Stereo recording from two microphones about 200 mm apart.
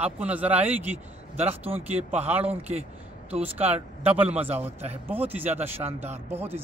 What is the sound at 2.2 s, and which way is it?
Speech, 10° right (ahead or behind).